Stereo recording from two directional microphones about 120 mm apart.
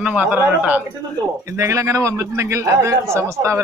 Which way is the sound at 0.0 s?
10° right (ahead or behind).